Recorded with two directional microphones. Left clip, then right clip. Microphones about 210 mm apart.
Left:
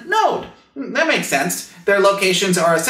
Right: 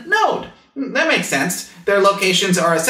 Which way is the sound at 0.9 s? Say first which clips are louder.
Even; 55° left (ahead or behind).